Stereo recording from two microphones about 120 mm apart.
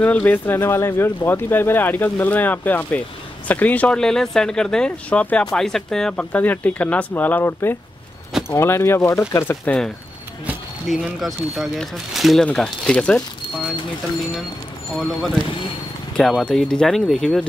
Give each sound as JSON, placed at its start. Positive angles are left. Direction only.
{"t": 0.0, "sound": "speech", "side_deg": 10}
{"t": 11.1, "sound": "speech", "side_deg": 0}
{"t": 15.0, "sound": "speech", "side_deg": 0}